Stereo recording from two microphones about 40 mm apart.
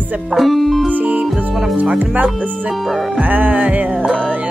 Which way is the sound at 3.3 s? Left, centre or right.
Right.